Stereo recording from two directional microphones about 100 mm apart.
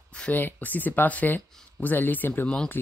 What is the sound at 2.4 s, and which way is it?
Speech, 10° left (ahead or behind).